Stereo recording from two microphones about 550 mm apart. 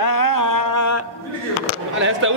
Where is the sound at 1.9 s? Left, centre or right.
Right.